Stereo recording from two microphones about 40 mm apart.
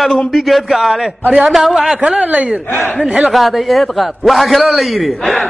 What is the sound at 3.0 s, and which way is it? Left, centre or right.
Speech, centre.